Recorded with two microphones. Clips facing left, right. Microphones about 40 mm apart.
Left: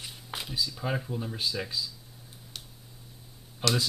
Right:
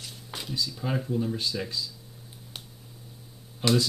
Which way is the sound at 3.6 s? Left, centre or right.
Centre.